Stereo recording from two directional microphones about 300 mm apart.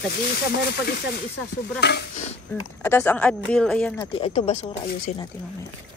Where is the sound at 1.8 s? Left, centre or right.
Left.